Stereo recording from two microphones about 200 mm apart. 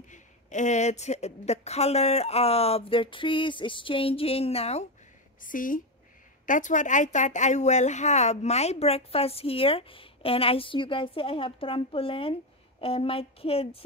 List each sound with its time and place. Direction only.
0.1 s a woman's voice: 35° left (ahead or behind)
5.4 s a woman's voice: 40° left (ahead or behind)